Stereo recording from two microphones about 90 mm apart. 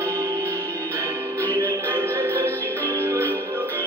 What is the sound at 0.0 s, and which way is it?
Music, 30° right (ahead or behind).